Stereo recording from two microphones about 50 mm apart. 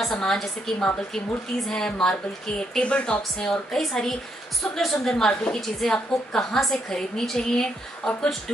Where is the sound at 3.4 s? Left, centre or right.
Centre.